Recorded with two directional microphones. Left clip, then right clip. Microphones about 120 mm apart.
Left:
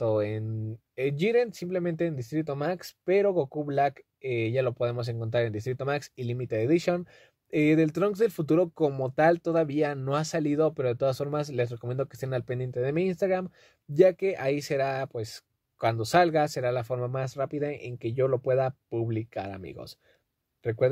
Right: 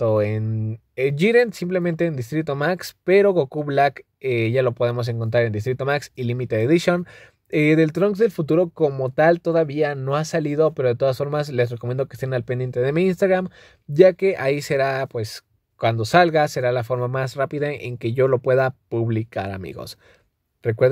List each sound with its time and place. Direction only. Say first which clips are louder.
0.0 s speech: right 7 dB; 15° right (ahead or behind)
1.1 s speech: right 8 dB; 35° right (ahead or behind)
8.0 s speech: right 7 dB; 10° right (ahead or behind)
12.8 s speech: right 8 dB; 30° right (ahead or behind)
13.9 s speech: right 7 dB; 25° right (ahead or behind)